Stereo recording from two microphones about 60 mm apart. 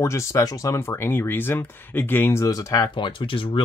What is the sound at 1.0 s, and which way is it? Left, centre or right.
Speech, left.